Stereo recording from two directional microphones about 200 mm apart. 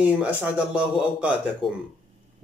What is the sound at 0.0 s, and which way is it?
A man's voice, 5° right (ahead or behind).